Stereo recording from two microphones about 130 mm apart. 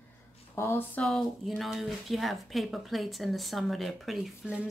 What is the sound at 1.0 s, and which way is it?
Speech, centre (ahead or behind).